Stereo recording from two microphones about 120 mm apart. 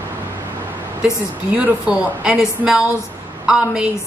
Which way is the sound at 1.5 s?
10° right (ahead or behind).